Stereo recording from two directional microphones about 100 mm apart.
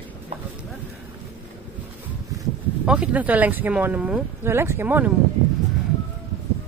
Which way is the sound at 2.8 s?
15° right (ahead or behind).